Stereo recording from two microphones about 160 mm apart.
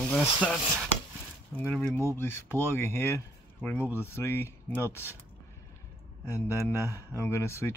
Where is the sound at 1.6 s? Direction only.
10° left (ahead or behind).